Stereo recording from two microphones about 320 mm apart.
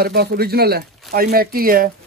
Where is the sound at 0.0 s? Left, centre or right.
Right.